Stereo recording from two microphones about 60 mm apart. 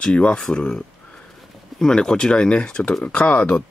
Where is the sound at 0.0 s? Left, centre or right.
Centre.